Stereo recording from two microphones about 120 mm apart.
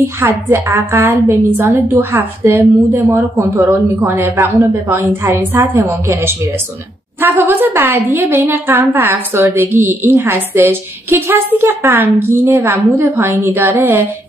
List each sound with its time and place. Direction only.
0.0 s a woman's voice: 20° right (ahead or behind)